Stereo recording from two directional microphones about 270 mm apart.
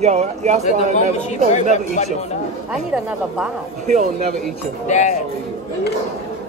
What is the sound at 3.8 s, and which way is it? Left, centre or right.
Speech, right.